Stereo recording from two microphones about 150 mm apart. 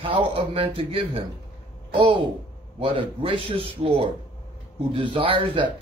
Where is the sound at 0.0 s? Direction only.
35° right (ahead or behind).